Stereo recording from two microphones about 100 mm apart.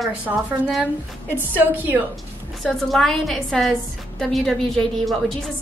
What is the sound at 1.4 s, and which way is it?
Speech, 20° right (ahead or behind).